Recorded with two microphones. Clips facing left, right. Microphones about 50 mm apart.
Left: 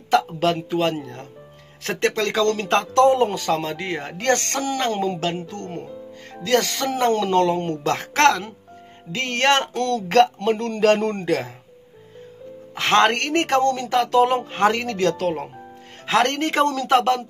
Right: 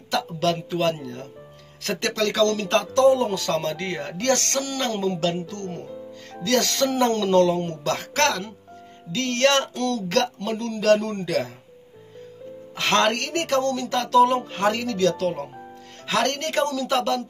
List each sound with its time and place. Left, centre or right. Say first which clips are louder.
0.4 s speech: left 2 dB; centre; by 3.3 s left
3.3 s speech: left 2 dB; left
3.5 s speech: even; centre
4.1 s speech: left 1 dB; left
7.4 s speech: left 2 dB; left
9.1 s music: left 1 dB; left
11.1 s speech: left 2 dB; left
12.7 s speech: left 3 dB; centre
13.0 s music: left 4 dB; left
14.0 s speech: right 2 dB; left
14.6 s music: left 3 dB; left
16.1 s speech: left 4 dB; left
16.6 s music: left 7 dB; left